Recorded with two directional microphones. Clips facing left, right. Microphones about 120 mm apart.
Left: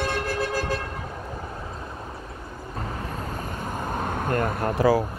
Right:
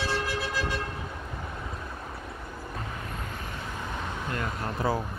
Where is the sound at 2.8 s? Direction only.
40° left (ahead or behind).